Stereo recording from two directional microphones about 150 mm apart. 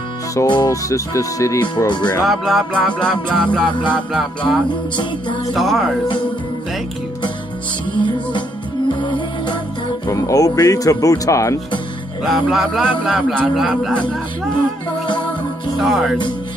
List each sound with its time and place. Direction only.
0.3 s speech: 25° left (ahead or behind)
2.2 s music: centre (ahead or behind)
8.0 s music: 30° left (ahead or behind)
10.0 s speech: 20° left (ahead or behind)
12.2 s music: centre (ahead or behind)
15.8 s music: centre (ahead or behind)